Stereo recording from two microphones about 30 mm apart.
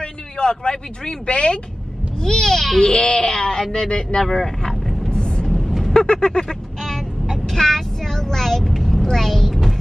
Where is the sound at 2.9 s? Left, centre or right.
Left.